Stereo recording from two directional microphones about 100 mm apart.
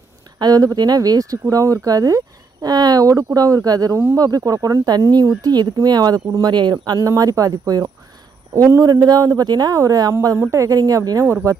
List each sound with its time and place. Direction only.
0.4 s speech: 40° right (ahead or behind)